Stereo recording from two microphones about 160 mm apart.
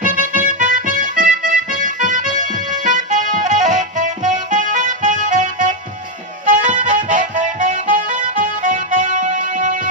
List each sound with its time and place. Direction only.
0.0 s music: 55° right (ahead or behind)